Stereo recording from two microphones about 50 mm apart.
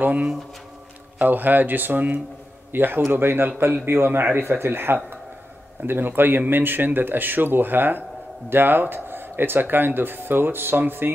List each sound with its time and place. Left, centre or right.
0.0 s speech: right